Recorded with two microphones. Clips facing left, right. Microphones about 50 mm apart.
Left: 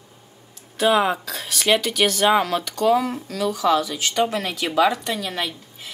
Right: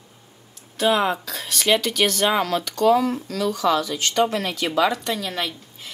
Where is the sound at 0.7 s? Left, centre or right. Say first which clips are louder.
Left 1 dB; centre.